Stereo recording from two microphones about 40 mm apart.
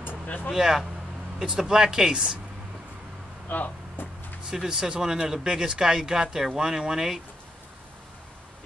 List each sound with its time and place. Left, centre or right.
0.5 s speech: centre
3.4 s speech: left
4.6 s speech: centre